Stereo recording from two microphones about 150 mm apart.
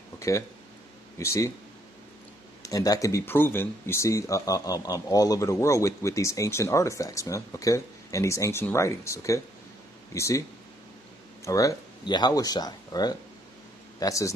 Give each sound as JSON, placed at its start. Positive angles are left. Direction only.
{"t": 1.1, "sound": "speech", "side_deg": 20}
{"t": 2.6, "sound": "speech", "side_deg": 25}
{"t": 11.4, "sound": "speech", "side_deg": 20}